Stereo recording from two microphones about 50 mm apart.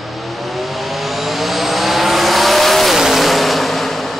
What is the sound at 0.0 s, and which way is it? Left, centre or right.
Vehicle, centre.